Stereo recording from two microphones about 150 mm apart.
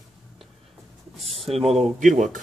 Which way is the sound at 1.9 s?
55° right (ahead or behind).